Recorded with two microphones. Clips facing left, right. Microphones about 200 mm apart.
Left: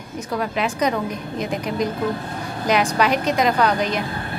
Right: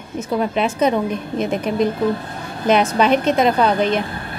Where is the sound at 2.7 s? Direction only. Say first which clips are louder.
Right 4 dB; 25° right (ahead or behind).